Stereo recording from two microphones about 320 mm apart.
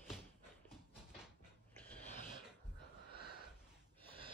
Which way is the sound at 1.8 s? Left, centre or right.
Centre.